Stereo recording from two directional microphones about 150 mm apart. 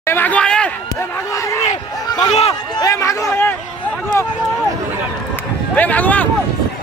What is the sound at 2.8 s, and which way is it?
Speech, 20° left (ahead or behind).